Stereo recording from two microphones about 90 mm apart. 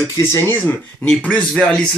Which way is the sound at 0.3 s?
25° left (ahead or behind).